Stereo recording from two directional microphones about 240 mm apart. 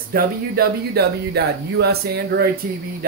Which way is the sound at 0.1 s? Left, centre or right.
Right.